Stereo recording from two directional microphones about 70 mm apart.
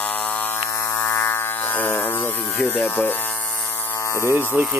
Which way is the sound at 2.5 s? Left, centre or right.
Left.